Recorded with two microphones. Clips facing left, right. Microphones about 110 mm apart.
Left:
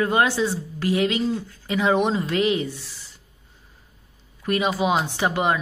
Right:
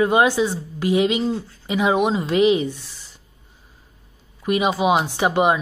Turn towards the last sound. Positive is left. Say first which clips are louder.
# right 4 dB
turn(degrees=-15)  # may be behind; listen again after turning